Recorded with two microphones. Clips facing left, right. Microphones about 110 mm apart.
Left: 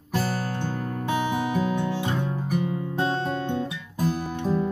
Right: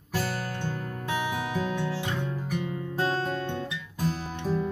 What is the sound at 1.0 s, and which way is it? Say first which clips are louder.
Music: left 4 dB; 30° left (ahead or behind).